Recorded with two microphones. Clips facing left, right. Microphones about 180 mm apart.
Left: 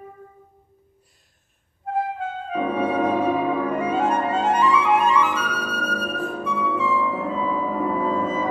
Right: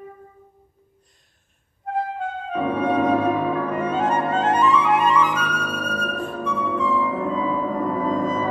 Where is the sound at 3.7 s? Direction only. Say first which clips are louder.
Even; 10° left (ahead or behind).